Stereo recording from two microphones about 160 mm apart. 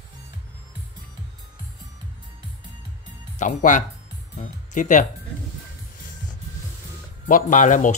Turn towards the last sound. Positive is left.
turn(degrees=50)  # may be behind; listen again after turning